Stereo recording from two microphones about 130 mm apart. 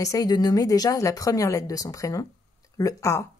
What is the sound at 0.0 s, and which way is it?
Speech, 30° left (ahead or behind).